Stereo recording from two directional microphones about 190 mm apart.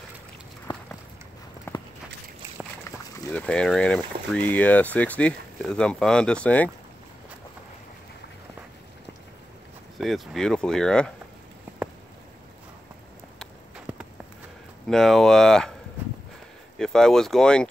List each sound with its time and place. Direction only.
1.7 s walk: 10° left (ahead or behind)
3.3 s speech: 5° left (ahead or behind)
9.9 s speech: centre (ahead or behind)
14.9 s speech: centre (ahead or behind)
16.7 s speech: 5° left (ahead or behind)